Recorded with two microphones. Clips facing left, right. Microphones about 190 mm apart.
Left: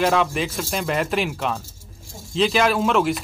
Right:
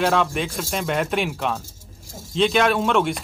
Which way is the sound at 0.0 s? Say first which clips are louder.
Left 1 dB; centre (ahead or behind).